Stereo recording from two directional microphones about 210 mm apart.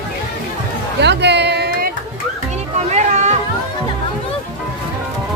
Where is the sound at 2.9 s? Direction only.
35° right (ahead or behind).